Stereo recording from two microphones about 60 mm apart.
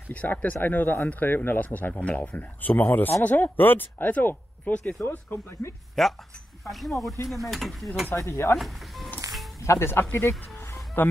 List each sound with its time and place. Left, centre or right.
0.1 s speech: left
2.3 s speech: left
5.0 s speech: left
6.0 s mechanisms: centre
8.3 s speech: left
8.5 s speech: centre
9.6 s speech: left
10.1 s music: left